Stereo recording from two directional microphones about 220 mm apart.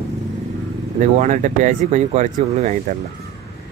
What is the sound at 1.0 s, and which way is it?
Speech, 35° right (ahead or behind).